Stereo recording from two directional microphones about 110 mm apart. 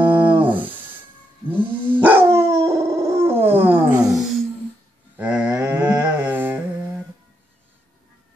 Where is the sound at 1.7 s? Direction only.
10° left (ahead or behind).